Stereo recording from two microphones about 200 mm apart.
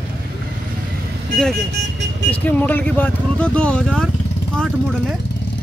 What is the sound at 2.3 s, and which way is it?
Speech, 10° left (ahead or behind).